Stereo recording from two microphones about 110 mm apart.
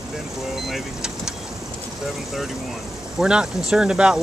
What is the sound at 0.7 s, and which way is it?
Vehicle, 5° right (ahead or behind).